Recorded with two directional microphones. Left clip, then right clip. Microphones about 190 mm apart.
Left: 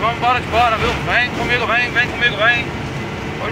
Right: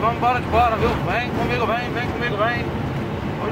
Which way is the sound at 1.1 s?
20° right (ahead or behind).